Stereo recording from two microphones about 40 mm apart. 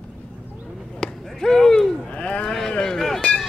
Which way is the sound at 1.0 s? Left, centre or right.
Centre.